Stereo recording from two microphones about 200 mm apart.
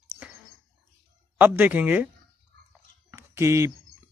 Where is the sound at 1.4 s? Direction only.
10° right (ahead or behind).